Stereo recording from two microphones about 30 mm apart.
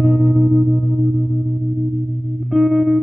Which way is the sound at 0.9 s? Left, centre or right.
Right.